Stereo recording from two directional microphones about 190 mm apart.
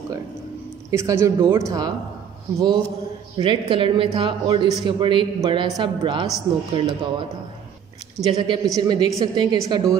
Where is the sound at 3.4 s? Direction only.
25° right (ahead or behind).